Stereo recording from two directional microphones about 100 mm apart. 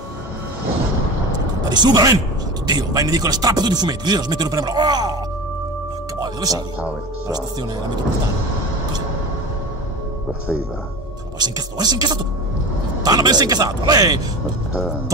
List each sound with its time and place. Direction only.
1.7 s speech: 45° right (ahead or behind)
6.2 s speech: 40° right (ahead or behind)
11.3 s a man's voice: 45° right (ahead or behind)